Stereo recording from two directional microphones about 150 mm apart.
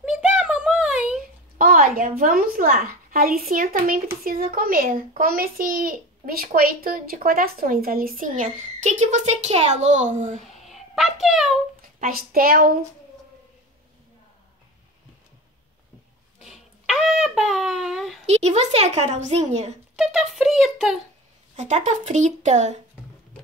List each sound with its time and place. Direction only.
0.0 s a sound: 5° right (ahead or behind)
1.6 s a child's voice: 70° right (ahead or behind)
10.6 s a sound: centre (ahead or behind)
12.0 s a child's voice: 75° right (ahead or behind)
16.3 s wind instrument: centre (ahead or behind)
18.2 s speech: 45° right (ahead or behind)
20.0 s speech: 5° right (ahead or behind)
21.5 s speech: 50° right (ahead or behind)